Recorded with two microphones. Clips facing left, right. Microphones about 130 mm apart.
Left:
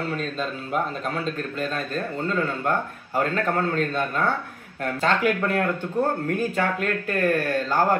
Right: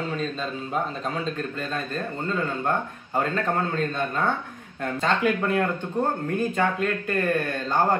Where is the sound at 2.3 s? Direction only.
20° right (ahead or behind).